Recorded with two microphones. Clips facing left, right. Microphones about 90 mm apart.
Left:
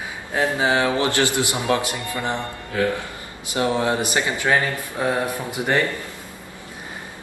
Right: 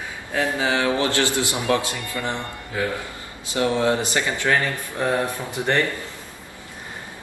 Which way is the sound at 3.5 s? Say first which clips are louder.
Even; 20° left (ahead or behind).